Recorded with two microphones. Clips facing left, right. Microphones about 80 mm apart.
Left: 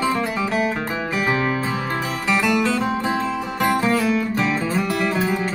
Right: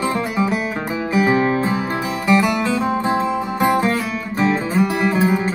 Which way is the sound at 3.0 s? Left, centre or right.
Right.